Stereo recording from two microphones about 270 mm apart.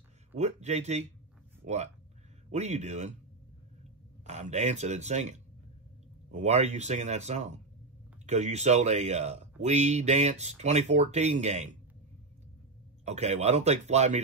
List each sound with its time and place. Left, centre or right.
0.4 s speech: right
4.3 s speech: right
13.0 s speech: right